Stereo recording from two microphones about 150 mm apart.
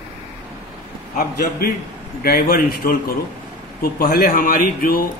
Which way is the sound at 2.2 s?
80° left.